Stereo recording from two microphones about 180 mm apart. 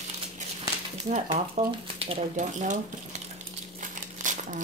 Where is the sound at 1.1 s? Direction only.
40° right (ahead or behind).